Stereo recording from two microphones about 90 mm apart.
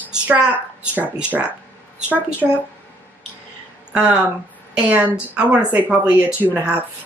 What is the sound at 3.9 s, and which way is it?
A woman's voice, 10° right (ahead or behind).